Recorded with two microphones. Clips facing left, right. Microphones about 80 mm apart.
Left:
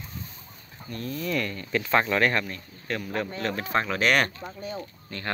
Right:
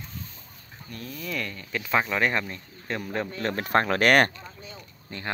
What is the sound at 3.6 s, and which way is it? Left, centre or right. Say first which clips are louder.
Speech: right 4 dB; right.